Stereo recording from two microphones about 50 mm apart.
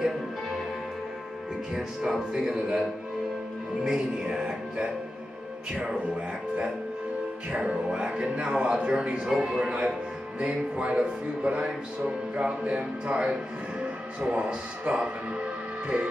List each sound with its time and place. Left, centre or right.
1.7 s speech: centre
3.8 s speech: centre
7.5 s speech: right